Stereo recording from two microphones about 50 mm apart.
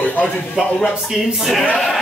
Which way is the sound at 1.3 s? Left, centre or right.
Centre.